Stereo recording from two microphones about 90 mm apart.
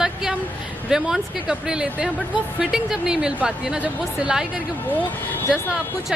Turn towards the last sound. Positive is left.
turn(degrees=20)  # may be behind; listen again after turning